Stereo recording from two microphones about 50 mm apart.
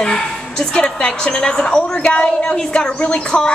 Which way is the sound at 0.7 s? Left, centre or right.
Left.